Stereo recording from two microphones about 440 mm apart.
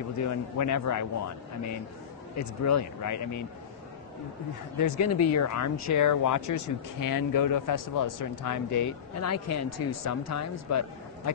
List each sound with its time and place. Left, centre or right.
0.2 s speech: left
2.3 s speech: left
4.7 s speech: left